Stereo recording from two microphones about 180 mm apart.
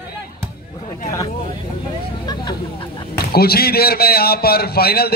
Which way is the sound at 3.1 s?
60° left (ahead or behind).